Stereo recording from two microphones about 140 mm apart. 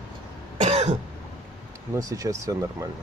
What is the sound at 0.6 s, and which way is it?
Cough, 50° right (ahead or behind).